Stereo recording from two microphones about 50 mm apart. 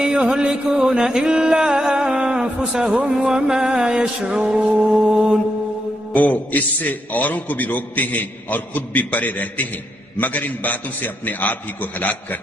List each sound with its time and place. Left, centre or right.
0.0 s music: centre
2.9 s speech: right
3.3 s music: centre
6.1 s a man's voice: left